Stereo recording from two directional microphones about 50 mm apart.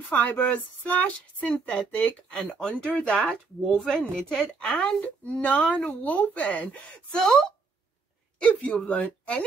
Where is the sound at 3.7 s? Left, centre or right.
Centre.